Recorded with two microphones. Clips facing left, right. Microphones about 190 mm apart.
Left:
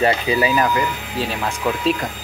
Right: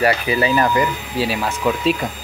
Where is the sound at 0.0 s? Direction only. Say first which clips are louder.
Even; 20° left (ahead or behind).